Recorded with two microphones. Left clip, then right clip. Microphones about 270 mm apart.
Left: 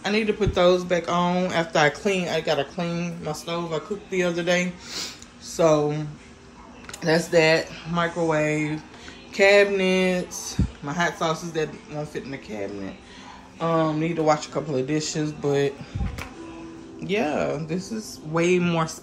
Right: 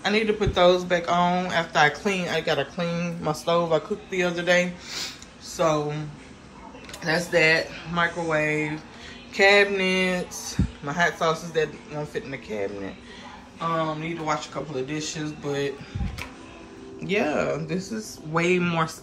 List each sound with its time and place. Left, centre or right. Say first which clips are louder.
0.0 s speech: even; centre
4.1 s speech: right 1 dB; centre
13.6 s speech: left 3 dB; left
17.0 s speech: even; centre